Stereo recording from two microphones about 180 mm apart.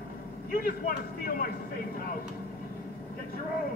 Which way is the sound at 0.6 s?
50° left (ahead or behind).